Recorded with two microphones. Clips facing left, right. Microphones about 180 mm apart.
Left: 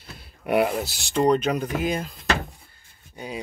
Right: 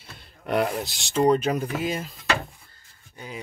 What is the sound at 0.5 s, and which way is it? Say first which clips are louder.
Speech: left 3 dB; 5° left (ahead or behind).